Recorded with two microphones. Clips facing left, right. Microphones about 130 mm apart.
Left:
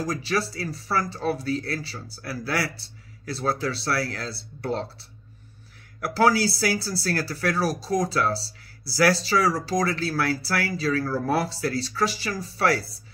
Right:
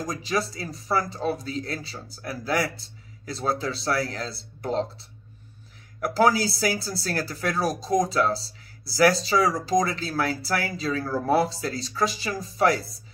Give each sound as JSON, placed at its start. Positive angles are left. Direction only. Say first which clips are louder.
{"t": 0.0, "sound": "speech", "louder": "left 1 dB", "side_deg": -20}
{"t": 6.1, "sound": "speech", "louder": "left 1 dB", "side_deg": -20}